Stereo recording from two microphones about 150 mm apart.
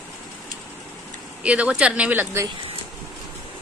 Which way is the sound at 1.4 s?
10° right (ahead or behind).